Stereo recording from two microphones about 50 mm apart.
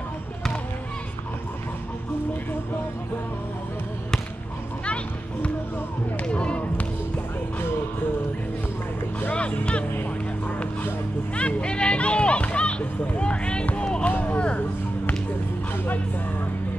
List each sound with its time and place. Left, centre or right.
4.8 s a sound: left
6.2 s basketball bounce: centre
9.3 s music: left
11.3 s music: left
14.0 s a sound: left
15.7 s music: left